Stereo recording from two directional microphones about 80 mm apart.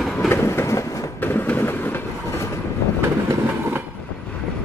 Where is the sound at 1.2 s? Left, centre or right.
Left.